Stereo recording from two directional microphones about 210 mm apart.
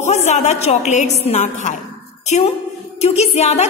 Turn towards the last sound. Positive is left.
turn(degrees=30)  # may be behind; listen again after turning